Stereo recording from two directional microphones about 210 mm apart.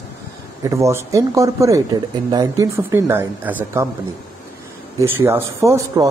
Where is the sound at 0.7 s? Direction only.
15° right (ahead or behind).